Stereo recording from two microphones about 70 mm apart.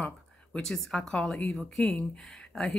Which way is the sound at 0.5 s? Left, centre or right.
Centre.